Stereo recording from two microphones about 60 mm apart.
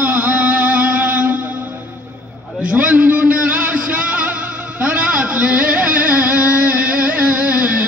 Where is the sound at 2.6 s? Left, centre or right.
Right.